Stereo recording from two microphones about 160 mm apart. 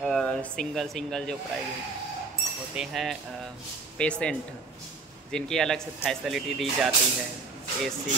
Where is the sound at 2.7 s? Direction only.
Centre (ahead or behind).